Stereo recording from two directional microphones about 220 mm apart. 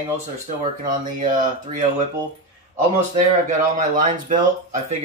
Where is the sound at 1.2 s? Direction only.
40° right (ahead or behind).